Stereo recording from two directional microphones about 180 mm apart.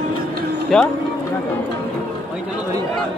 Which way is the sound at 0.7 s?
5° left (ahead or behind).